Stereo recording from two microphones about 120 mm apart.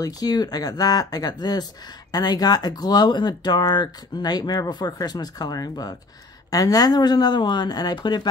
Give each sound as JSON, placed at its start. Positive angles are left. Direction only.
{"t": 0.0, "sound": "speech", "side_deg": 35}